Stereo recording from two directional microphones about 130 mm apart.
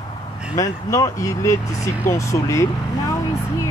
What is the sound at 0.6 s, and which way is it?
Speech, 25° left (ahead or behind).